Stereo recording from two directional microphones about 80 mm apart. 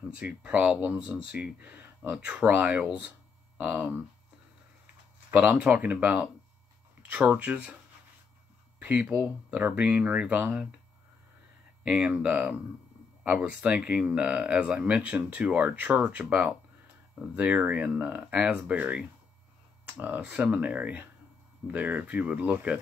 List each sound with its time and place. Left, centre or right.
0.1 s speech: centre
5.3 s speech: centre
8.7 s a sound: centre
9.0 s speech: centre
11.9 s speech: centre